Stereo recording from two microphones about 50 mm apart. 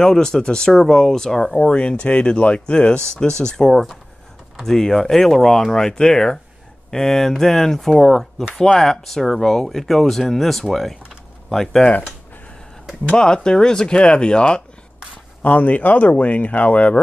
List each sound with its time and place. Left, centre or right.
0.0 s speech: centre
13.2 s speech: centre
15.4 s speech: left